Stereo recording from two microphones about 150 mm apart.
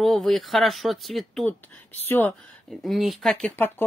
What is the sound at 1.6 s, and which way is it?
Speech, 15° left (ahead or behind).